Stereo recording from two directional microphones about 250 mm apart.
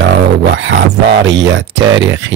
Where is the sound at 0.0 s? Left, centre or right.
Right.